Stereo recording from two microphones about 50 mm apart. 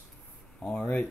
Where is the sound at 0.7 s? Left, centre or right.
Left.